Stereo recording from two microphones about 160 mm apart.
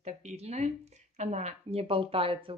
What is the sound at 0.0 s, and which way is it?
Speech, 45° right (ahead or behind).